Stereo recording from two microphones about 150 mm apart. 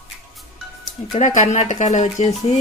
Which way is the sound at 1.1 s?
50° left (ahead or behind).